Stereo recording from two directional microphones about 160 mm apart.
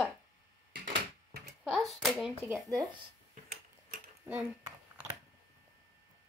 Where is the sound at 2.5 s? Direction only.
20° right (ahead or behind).